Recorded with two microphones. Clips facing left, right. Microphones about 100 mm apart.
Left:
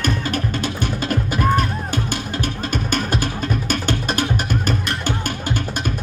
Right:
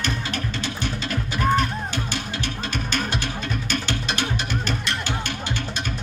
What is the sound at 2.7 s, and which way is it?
Music, 50° left (ahead or behind).